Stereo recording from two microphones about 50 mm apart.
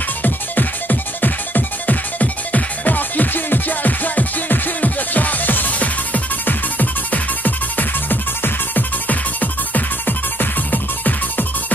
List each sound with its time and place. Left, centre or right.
0.2 s music: left